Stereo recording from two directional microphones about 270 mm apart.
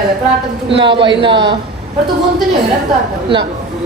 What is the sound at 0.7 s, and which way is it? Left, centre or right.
Speech, centre.